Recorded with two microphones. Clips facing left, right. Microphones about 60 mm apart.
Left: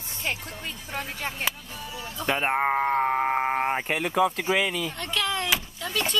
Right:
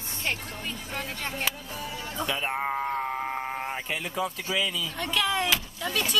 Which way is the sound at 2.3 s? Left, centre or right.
Left.